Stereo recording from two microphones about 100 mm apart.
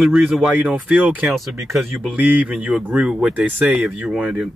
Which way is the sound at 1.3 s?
Centre (ahead or behind).